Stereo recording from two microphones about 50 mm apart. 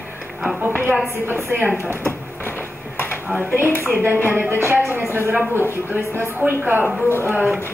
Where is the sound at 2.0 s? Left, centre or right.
Left.